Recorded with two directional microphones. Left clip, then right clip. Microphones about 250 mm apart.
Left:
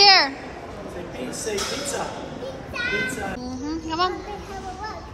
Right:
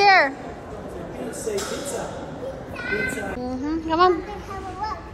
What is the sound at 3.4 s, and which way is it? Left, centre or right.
Speech, centre.